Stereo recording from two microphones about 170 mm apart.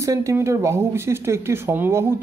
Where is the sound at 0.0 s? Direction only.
20° right (ahead or behind).